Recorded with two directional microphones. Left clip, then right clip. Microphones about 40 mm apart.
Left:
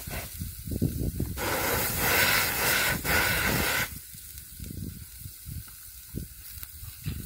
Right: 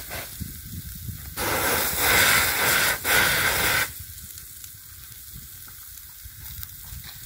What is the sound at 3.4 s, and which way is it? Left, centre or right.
Static, centre.